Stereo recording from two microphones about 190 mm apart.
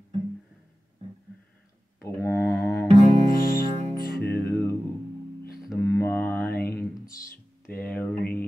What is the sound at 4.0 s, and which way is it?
Music, 50° left (ahead or behind).